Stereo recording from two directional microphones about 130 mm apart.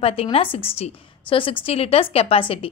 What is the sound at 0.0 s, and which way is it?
A woman's voice, 45° left (ahead or behind).